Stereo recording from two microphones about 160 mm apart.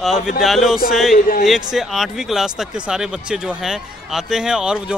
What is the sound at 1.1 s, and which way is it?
Speech, 60° left (ahead or behind).